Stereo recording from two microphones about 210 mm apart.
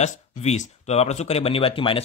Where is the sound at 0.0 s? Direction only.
30° left (ahead or behind).